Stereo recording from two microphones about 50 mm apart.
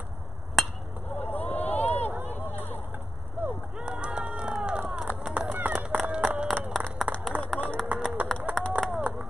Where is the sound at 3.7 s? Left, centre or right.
Centre.